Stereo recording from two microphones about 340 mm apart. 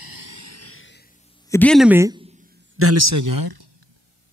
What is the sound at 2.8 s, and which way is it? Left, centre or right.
Speech, right.